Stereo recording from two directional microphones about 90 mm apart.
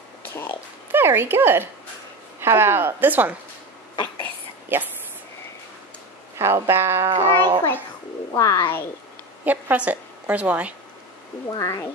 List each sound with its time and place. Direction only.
0.3 s speech: 30° left (ahead or behind)
0.9 s speech: 25° right (ahead or behind)
4.7 s speech: 20° right (ahead or behind)
6.3 s speech: 30° right (ahead or behind)
7.1 s speech: 60° right (ahead or behind)
8.3 s speech: 40° left (ahead or behind)
9.4 s a woman's voice: 20° right (ahead or behind)
11.5 s speech: 35° left (ahead or behind)